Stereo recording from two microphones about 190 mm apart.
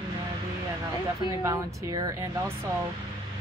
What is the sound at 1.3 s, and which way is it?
Speech, 20° right (ahead or behind).